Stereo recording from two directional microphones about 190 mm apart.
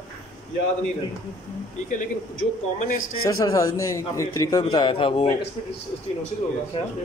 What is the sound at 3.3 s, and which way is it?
A man's voice, 15° left (ahead or behind).